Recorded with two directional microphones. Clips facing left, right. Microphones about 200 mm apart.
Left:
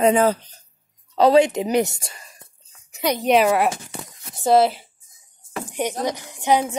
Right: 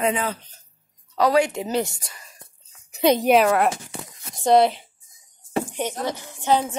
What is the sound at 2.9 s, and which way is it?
Speech, 25° right (ahead or behind).